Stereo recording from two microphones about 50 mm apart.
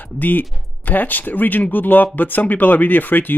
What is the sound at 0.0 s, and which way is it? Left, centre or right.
Speech, left.